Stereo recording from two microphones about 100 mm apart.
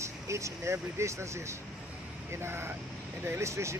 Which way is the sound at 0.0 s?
30° right (ahead or behind).